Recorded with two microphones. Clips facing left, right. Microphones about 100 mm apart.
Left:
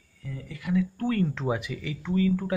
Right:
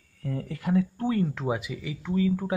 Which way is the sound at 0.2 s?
50° right (ahead or behind).